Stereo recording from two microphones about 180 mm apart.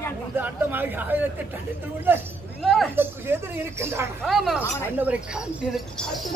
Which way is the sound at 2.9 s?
10° right (ahead or behind).